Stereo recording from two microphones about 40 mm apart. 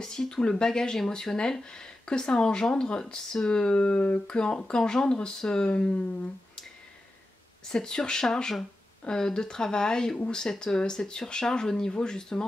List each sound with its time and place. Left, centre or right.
0.0 s speech: centre
3.9 s speech: left
4.4 s speech: left
7.7 s speech: centre